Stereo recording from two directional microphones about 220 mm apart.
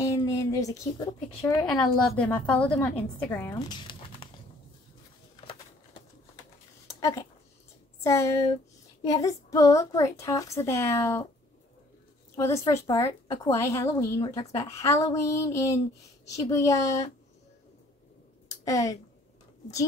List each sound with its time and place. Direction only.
0.0 s speech: 15° left (ahead or behind)
2.0 s a woman's voice: 5° left (ahead or behind); by 4.3 s 20° left (ahead or behind)
6.9 s a sound: 15° left (ahead or behind)
8.0 s a woman's voice: 15° left (ahead or behind)
12.4 s a woman's voice: 15° left (ahead or behind)
18.7 s a woman's voice: 15° left (ahead or behind)